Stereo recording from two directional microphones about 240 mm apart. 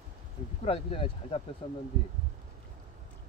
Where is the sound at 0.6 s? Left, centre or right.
Left.